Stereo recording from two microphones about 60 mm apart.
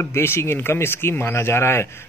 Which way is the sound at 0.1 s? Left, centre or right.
Left.